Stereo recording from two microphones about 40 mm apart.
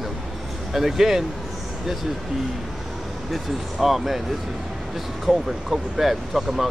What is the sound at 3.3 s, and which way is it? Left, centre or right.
Speech, centre.